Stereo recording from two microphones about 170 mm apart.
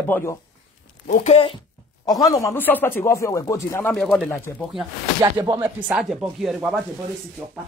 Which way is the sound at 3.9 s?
5° left (ahead or behind).